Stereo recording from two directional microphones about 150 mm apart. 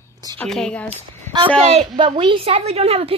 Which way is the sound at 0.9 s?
35° right (ahead or behind).